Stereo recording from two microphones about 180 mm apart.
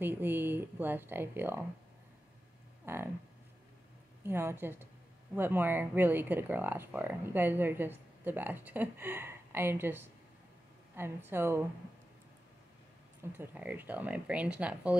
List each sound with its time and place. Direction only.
0.0 s speech: 10° right (ahead or behind)
2.8 s speech: 15° right (ahead or behind)
4.2 s speech: 15° right (ahead or behind)
13.2 s speech: 10° right (ahead or behind)